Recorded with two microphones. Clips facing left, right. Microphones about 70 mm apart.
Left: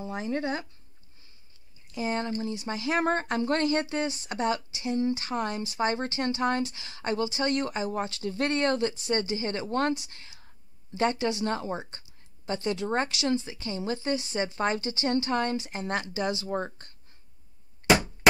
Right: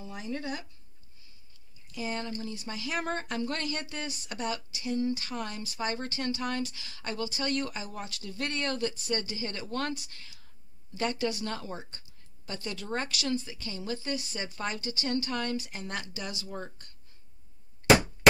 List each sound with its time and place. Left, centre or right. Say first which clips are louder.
0.0 s speech: left 6 dB; left
1.9 s speech: left 5 dB; left